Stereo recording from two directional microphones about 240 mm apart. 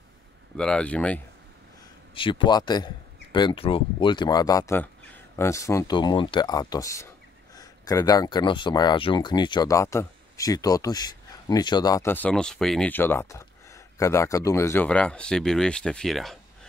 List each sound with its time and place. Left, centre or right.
0.6 s speech: centre
2.1 s speech: left; by 16.3 s centre